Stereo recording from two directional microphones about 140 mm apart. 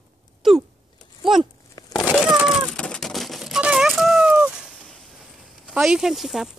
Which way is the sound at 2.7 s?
5° left (ahead or behind).